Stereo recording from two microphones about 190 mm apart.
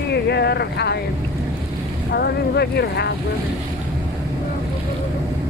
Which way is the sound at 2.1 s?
60° left (ahead or behind).